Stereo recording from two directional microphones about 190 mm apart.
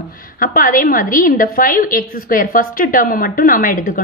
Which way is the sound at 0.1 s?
45° left (ahead or behind).